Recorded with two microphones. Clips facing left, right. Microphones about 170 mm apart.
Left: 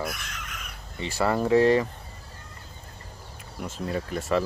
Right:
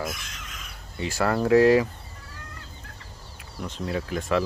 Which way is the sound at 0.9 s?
Centre (ahead or behind).